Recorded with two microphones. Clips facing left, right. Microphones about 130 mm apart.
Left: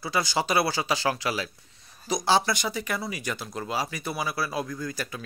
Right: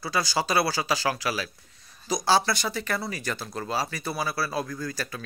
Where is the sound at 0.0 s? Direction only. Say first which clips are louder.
Even; 20° left (ahead or behind).